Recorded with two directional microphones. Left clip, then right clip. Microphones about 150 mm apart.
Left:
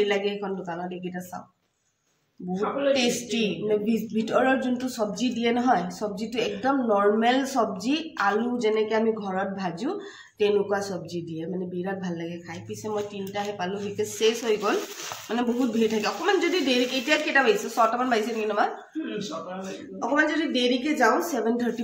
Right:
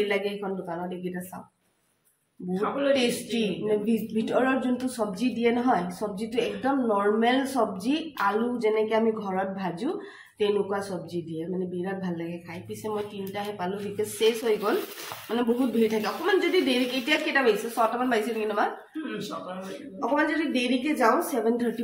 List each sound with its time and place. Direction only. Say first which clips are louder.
0.1 s speech: left 2 dB; 15° left (ahead or behind)
2.9 s speech: left 1 dB; 15° left (ahead or behind)
20.0 s speech: left 2 dB; 15° left (ahead or behind)